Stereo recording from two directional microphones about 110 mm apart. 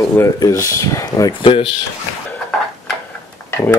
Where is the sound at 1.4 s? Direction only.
55° left (ahead or behind).